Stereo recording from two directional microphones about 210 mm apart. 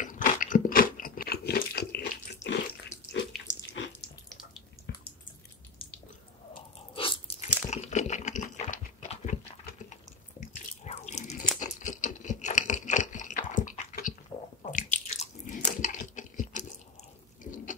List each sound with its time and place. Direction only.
0.0 s biting: 40° left (ahead or behind)
2.4 s water: 60° left (ahead or behind)
3.8 s water: 65° left (ahead or behind)
4.9 s drip: 50° left (ahead or behind)
6.5 s crunch: 25° left (ahead or behind)
10.4 s biting: 35° left (ahead or behind)
11.6 s a sound: 35° left (ahead or behind)
14.6 s biting: 35° left (ahead or behind)
15.8 s a sound: 40° left (ahead or behind)